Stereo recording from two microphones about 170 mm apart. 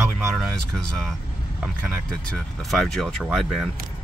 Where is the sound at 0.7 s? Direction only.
5° left (ahead or behind).